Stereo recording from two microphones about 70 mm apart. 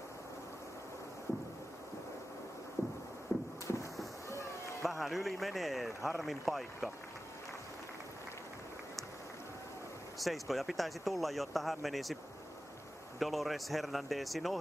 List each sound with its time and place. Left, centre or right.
2.8 s a sound: left
4.8 s a man's voice: centre
10.1 s speech: centre
13.2 s speech: centre